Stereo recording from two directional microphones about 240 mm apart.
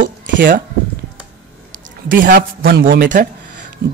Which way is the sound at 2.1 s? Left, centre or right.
Right.